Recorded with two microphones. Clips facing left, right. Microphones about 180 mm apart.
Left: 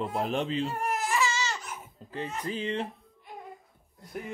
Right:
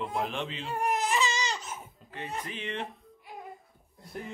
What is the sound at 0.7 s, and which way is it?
Baby cry, 15° right (ahead or behind).